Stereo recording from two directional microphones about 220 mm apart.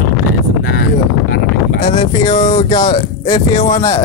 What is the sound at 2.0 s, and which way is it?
Speech, 20° left (ahead or behind).